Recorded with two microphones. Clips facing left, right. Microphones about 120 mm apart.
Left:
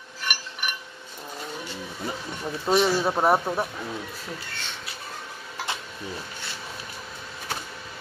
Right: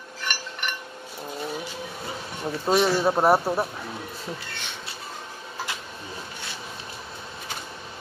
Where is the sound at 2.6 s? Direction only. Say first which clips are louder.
Right 1 dB; 5° right (ahead or behind).